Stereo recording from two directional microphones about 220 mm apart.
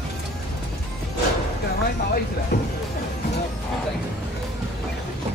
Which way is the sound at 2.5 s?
40° left (ahead or behind).